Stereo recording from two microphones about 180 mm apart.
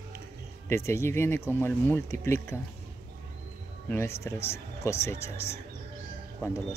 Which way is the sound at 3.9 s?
15° left (ahead or behind).